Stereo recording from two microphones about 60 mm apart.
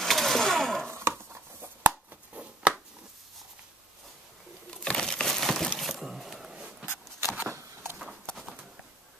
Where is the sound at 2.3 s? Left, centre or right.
Centre.